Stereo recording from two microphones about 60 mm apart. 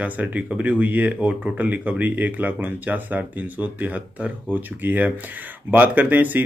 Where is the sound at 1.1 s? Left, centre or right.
Centre.